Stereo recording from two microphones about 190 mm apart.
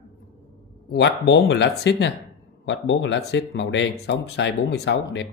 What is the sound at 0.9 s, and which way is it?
Speech, 65° left (ahead or behind).